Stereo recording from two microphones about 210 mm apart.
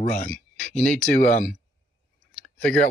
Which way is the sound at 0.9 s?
35° left (ahead or behind).